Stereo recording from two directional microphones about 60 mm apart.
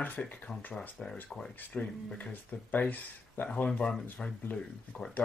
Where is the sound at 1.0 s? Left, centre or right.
Centre.